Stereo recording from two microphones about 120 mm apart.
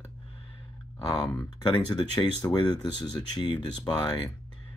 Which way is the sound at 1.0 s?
35° left (ahead or behind).